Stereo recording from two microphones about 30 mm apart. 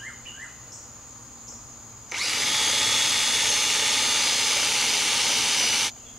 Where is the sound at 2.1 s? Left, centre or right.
Centre.